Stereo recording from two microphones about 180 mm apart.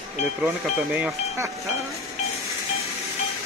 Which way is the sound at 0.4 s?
5° right (ahead or behind).